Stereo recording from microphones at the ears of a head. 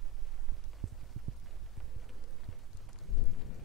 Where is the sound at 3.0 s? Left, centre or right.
Left.